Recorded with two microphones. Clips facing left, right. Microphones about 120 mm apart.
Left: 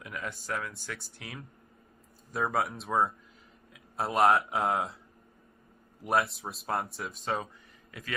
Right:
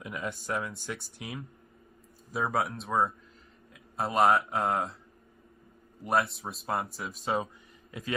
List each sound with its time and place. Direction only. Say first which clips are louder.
0.0 s speech: right 3 dB; 20° right (ahead or behind)
2.3 s speech: even; centre (ahead or behind)
6.0 s speech: even; centre (ahead or behind)
7.9 s speech: right 5 dB; 20° right (ahead or behind)